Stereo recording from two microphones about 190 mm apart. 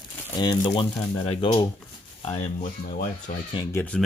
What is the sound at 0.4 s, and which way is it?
Speech, 25° left (ahead or behind).